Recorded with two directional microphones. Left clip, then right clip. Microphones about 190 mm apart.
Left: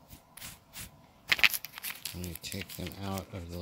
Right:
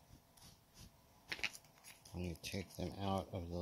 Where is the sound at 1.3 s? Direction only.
10° left (ahead or behind).